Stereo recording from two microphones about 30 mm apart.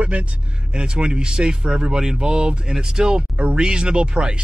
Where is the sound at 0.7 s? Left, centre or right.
Right.